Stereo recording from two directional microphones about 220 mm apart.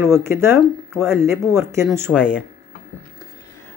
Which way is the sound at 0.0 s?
10° right (ahead or behind).